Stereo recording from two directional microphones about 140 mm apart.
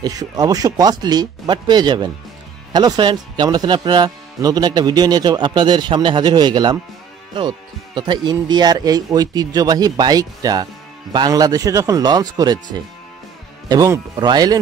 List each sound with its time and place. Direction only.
0.0 s speech: 25° right (ahead or behind)
13.7 s speech: 25° right (ahead or behind)